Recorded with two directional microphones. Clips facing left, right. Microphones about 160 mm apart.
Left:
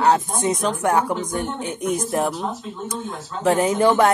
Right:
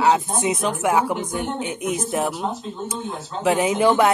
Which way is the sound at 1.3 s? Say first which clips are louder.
Even; 40° left (ahead or behind).